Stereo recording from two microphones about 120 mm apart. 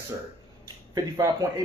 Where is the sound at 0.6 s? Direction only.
30° right (ahead or behind).